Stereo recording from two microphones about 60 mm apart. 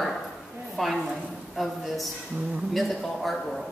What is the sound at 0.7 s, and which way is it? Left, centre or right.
A man's voice, centre.